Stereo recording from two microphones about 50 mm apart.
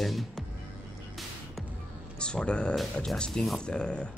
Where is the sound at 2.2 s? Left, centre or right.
Centre.